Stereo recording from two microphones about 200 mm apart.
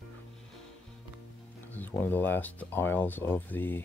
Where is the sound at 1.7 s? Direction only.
10° left (ahead or behind).